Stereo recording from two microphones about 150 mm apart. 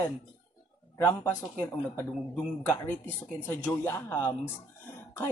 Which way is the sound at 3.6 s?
15° left (ahead or behind).